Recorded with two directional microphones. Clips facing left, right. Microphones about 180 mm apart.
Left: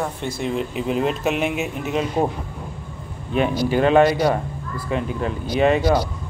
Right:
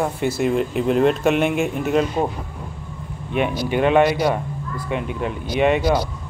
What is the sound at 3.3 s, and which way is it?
Speech, 35° left (ahead or behind).